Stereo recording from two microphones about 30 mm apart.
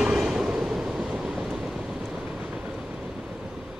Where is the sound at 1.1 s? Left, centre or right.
Centre.